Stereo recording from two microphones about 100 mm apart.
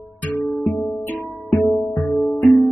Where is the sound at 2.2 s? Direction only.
20° left (ahead or behind).